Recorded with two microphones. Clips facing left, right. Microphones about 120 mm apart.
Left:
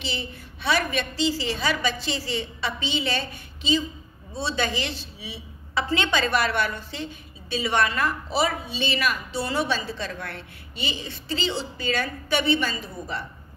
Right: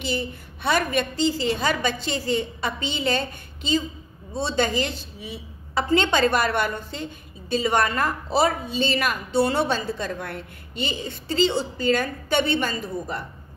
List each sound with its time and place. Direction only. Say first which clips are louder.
0.0 s a woman's voice: right 5 dB; 50° right (ahead or behind)